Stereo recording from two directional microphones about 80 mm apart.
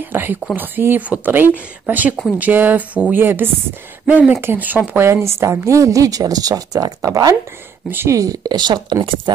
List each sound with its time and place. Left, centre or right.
0.1 s a sound: right
0.6 s a woman's voice: right
8.5 s speech: right